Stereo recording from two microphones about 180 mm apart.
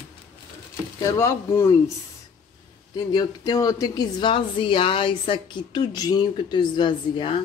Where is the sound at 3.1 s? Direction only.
25° left (ahead or behind).